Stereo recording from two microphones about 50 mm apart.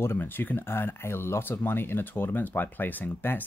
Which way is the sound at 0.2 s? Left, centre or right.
Left.